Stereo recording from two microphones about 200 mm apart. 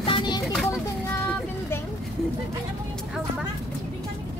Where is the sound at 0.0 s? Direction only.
25° left (ahead or behind).